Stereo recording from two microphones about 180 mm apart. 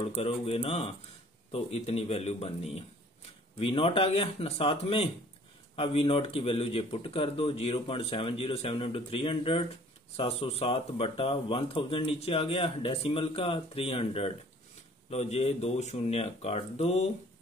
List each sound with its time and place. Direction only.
0.0 s speech: 35° left (ahead or behind)